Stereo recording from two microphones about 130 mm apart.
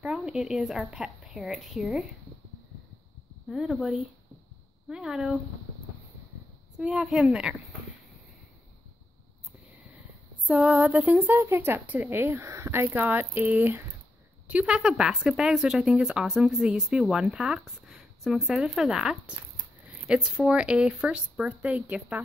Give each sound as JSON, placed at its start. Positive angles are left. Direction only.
{"t": 0.0, "sound": "speech", "side_deg": -5}
{"t": 3.4, "sound": "speech", "side_deg": 0}
{"t": 6.8, "sound": "speech", "side_deg": -5}
{"t": 10.4, "sound": "speech", "side_deg": -10}